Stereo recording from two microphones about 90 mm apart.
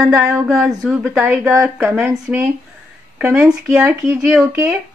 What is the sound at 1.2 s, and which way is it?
Speech, 30° right (ahead or behind).